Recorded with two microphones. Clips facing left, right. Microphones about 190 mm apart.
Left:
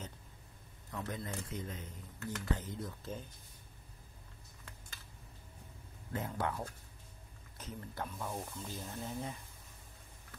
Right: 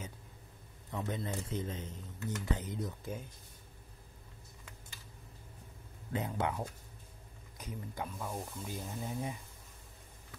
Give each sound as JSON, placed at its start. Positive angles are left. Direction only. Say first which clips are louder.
{"t": 0.9, "sound": "a man's voice", "louder": "right 3 dB", "side_deg": -25}
{"t": 6.1, "sound": "speech", "louder": "right 2 dB", "side_deg": -20}